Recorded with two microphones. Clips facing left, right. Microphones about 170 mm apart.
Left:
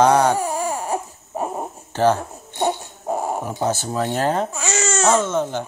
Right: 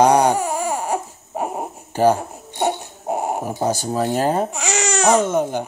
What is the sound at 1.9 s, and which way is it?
Speech, 10° right (ahead or behind).